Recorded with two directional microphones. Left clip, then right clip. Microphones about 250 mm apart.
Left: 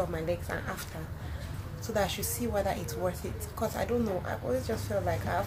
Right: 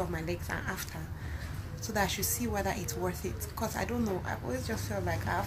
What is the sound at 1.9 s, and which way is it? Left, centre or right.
Speech, centre.